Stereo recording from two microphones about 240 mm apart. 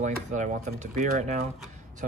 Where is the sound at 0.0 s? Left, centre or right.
Right.